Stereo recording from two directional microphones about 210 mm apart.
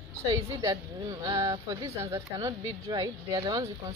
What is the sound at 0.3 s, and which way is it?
Speech, 15° right (ahead or behind).